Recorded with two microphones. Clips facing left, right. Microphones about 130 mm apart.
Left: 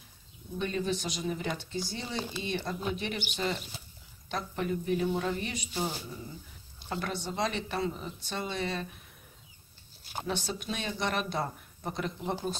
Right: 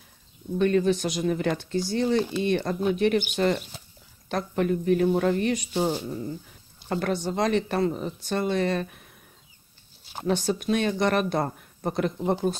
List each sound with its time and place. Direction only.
0.6 s speech: 60° right (ahead or behind)
3.3 s speech: 65° right (ahead or behind)
4.3 s speech: 55° right (ahead or behind)
5.8 s speech: 70° right (ahead or behind)
6.9 s speech: 50° right (ahead or behind)
10.2 s speech: 50° right (ahead or behind)